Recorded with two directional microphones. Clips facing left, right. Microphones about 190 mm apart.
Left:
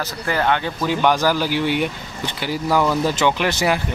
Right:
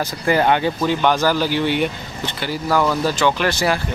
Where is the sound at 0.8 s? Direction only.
10° left (ahead or behind).